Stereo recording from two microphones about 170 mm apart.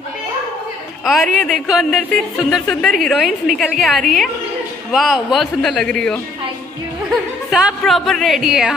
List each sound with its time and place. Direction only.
1.0 s speech: centre (ahead or behind)
7.5 s speech: centre (ahead or behind)